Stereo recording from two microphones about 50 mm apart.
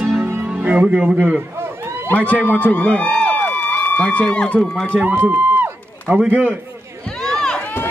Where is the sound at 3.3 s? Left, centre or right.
Left.